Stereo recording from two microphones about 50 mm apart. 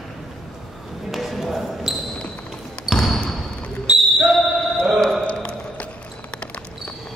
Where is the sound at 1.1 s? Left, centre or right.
Centre.